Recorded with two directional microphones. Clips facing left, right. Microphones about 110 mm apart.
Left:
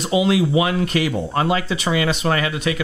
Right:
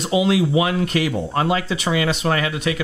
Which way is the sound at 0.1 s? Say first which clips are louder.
Even; 5° left (ahead or behind).